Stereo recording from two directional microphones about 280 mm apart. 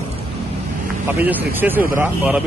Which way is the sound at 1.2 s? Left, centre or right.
Centre.